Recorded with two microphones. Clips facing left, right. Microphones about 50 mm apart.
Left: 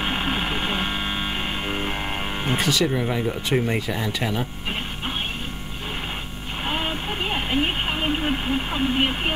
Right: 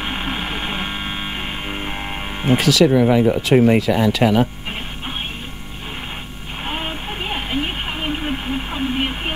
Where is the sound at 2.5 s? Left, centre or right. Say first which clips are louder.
Right 9 dB; right.